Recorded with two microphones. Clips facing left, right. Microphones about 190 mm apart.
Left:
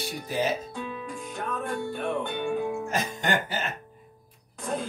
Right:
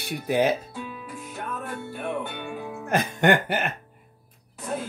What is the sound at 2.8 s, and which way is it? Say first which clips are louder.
Speech: right 7 dB; 60° right (ahead or behind).